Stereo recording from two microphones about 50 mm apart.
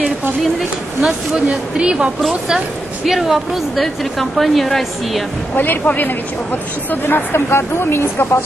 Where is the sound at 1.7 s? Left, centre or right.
Centre.